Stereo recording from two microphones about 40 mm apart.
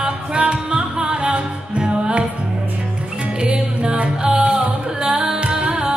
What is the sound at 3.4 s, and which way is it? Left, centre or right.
Music, right.